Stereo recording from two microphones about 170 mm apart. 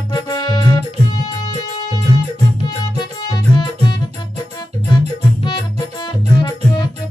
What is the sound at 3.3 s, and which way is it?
Music, 25° left (ahead or behind).